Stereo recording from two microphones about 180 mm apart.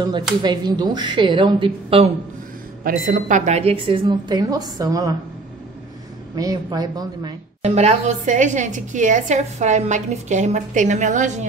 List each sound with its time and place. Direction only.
0.4 s a woman's voice: 25° right (ahead or behind)
2.8 s a woman's voice: 50° right (ahead or behind); by 5.1 s 20° right (ahead or behind)
6.3 s a woman's voice: 20° right (ahead or behind)
7.6 s a woman's voice: 40° right (ahead or behind)